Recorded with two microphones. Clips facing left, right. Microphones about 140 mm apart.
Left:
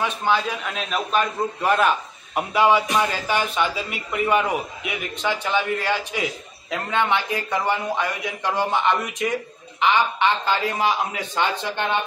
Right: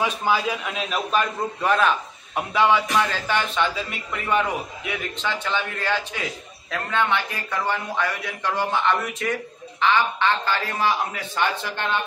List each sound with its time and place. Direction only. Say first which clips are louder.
0.0 s a man's voice: even; 10° right (ahead or behind); by 11.8 s 20° left (ahead or behind)